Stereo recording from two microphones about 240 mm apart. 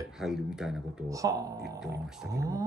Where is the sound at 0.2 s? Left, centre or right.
Centre.